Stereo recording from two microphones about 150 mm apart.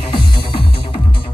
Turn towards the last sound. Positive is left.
turn(degrees=30)  # may be behind; listen again after turning